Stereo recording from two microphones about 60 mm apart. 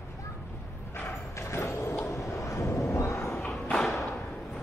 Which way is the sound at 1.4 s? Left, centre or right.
Left.